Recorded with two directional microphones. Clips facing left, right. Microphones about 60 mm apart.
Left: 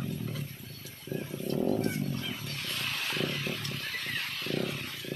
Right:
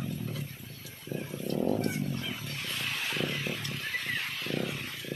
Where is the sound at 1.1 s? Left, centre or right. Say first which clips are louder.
Even; centre.